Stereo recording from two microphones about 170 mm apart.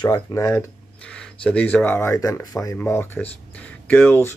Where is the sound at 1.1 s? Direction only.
5° left (ahead or behind).